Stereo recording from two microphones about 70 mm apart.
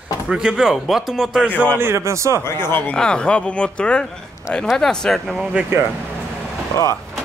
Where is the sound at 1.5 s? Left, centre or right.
Left.